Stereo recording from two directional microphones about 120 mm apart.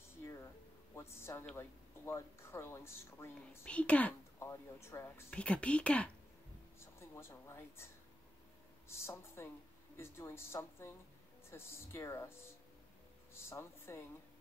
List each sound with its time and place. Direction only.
0.9 s a woman's voice: 20° left (ahead or behind)
3.6 s speech: 10° left (ahead or behind)
4.4 s speech: 20° left (ahead or behind)
5.3 s speech: 10° left (ahead or behind)
6.8 s a woman's voice: 20° left (ahead or behind)